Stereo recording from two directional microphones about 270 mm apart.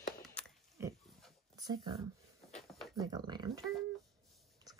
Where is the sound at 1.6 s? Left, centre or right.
Centre.